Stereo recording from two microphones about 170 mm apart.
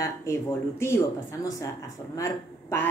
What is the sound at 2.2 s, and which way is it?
Speech, 15° left (ahead or behind).